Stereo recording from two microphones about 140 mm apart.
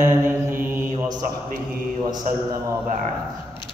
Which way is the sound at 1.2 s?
75° right (ahead or behind).